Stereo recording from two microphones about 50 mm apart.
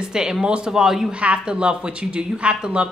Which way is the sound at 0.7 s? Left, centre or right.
Centre.